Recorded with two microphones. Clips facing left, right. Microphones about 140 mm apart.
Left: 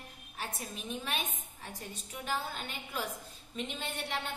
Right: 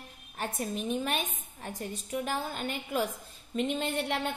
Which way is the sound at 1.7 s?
50° right (ahead or behind).